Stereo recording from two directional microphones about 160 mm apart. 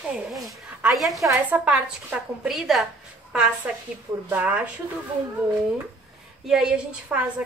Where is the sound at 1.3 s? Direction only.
10° right (ahead or behind).